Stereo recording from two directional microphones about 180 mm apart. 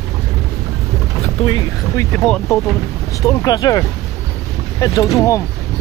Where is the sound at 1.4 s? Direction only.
25° left (ahead or behind).